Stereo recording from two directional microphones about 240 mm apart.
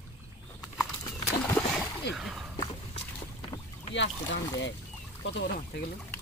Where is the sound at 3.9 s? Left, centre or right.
Left.